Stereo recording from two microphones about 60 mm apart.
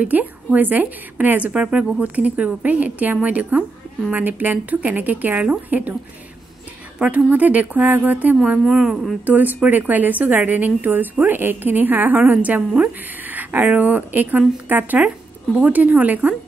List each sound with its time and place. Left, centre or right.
0.0 s a woman's voice: right
7.0 s a woman's voice: right
8.6 s speech: centre
9.2 s a woman's voice: right